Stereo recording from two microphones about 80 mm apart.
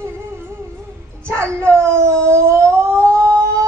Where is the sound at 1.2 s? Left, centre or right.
Right.